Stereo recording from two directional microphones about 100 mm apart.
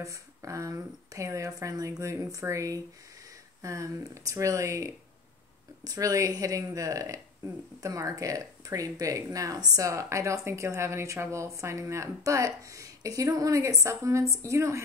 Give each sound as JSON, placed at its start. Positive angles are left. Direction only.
{"t": 0.0, "sound": "a woman's voice", "side_deg": -30}